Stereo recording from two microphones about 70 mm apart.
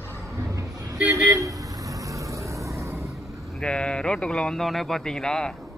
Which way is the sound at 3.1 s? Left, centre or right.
Centre.